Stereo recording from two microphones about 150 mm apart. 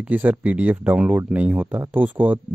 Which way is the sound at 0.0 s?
10° right (ahead or behind).